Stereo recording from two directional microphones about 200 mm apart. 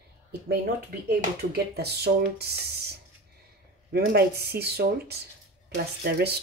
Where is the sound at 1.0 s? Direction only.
55° right (ahead or behind).